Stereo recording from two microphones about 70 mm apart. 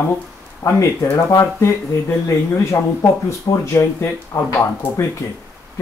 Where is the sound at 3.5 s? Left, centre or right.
Left.